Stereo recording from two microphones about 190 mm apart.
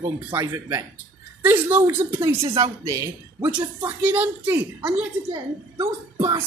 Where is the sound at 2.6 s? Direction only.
15° right (ahead or behind).